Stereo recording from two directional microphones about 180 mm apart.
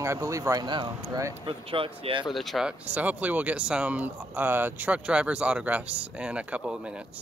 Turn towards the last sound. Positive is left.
turn(degrees=-5)  # may be behind; listen again after turning